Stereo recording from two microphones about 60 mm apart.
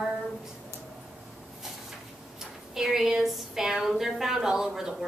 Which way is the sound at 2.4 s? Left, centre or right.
Centre.